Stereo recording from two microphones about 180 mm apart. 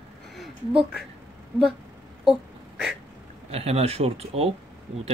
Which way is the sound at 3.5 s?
35° right (ahead or behind).